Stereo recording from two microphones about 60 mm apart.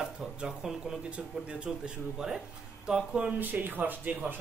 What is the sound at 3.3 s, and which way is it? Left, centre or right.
A woman's voice, right.